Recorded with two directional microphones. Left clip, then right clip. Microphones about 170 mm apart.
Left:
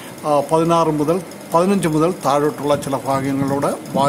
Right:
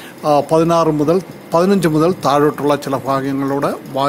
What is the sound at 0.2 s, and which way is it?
A man's voice, 25° right (ahead or behind).